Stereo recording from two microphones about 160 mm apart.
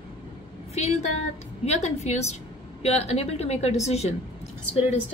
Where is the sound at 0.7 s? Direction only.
45° left (ahead or behind).